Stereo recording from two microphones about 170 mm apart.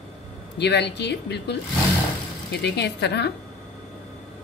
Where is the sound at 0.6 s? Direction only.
85° left.